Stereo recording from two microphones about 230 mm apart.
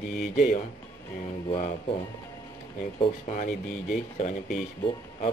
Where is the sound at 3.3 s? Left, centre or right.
Left.